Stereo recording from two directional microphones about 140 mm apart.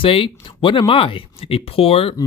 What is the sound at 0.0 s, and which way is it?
Speech, 40° left (ahead or behind).